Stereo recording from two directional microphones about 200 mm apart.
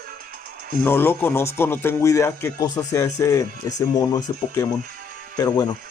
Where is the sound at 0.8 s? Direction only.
10° left (ahead or behind).